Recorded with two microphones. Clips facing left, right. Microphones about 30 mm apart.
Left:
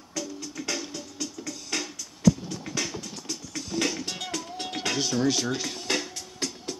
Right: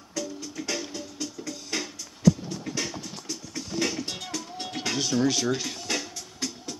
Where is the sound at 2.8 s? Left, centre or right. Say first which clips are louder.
Even; centre.